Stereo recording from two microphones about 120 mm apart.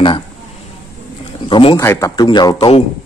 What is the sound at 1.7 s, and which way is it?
Speech, 25° left (ahead or behind).